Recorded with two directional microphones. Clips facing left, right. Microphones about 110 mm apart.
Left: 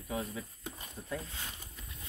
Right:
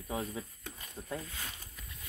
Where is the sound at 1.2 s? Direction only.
25° left (ahead or behind).